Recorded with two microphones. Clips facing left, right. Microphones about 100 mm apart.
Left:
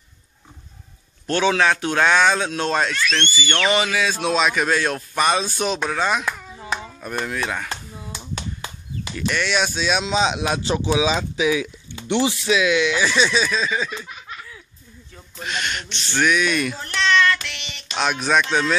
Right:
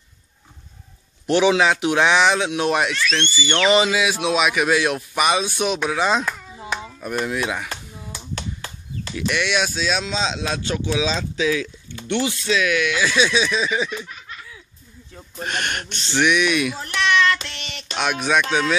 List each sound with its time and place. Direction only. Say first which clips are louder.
1.2 s speech: right 2 dB; 10° right (ahead or behind)
6.7 s chopping: right 1 dB; 5° right (ahead or behind)
9.1 s speech: even; 5° right (ahead or behind)
10.0 s speech: left 4 dB; 15° left (ahead or behind)
13.0 s speech: even; centre (ahead or behind)
15.4 s speech: right 1 dB; 50° right (ahead or behind)
16.2 s speech: right 1 dB; 5° right (ahead or behind)
17.5 s a sound: right 1 dB; 40° right (ahead or behind)
17.9 s speech: left 1 dB; 5° right (ahead or behind)